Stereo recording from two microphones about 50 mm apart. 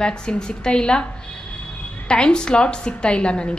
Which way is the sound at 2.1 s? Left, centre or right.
Centre.